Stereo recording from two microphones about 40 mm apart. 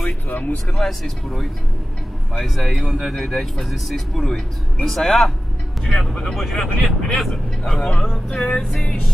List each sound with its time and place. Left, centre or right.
0.3 s speech: left
0.7 s speech: centre